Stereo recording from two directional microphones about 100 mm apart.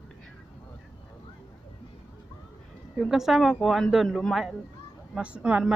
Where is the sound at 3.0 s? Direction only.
5° right (ahead or behind).